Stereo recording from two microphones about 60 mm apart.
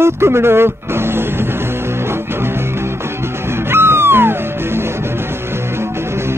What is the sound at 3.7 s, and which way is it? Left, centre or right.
Music, right.